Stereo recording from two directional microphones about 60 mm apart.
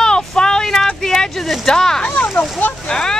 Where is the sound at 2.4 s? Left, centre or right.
Left.